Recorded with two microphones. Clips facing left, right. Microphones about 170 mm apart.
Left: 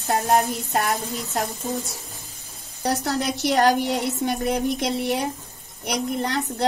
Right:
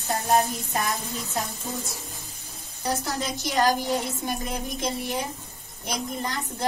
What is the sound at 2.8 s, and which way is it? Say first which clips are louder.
A woman's voice: left 5 dB; 70° left (ahead or behind).